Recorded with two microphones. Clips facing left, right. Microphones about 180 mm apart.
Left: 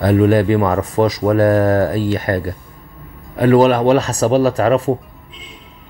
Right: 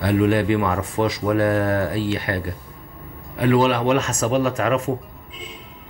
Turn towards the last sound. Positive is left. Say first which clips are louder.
# left 6 dB
turn(degrees=35)  # may be behind; listen again after turning